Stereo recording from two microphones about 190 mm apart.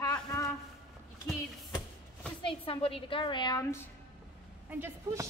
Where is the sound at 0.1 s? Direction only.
15° left (ahead or behind).